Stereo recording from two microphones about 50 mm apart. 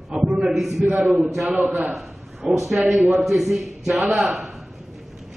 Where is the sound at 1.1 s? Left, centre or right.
Centre.